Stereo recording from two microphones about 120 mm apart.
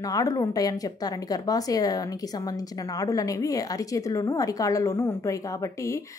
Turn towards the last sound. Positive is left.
turn(degrees=25)  # may be behind; listen again after turning